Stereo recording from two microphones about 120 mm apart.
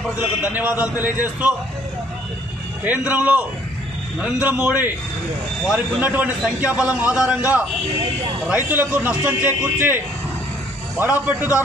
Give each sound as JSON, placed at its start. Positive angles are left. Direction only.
{"t": 0.2, "sound": "a man's voice", "side_deg": -15}
{"t": 2.8, "sound": "a man's voice", "side_deg": -15}
{"t": 8.5, "sound": "a man's voice", "side_deg": -15}